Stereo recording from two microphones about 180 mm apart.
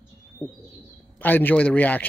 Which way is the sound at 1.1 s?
10° left (ahead or behind).